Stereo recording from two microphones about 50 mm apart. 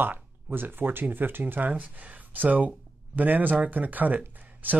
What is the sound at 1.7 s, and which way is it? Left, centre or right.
Speech, right.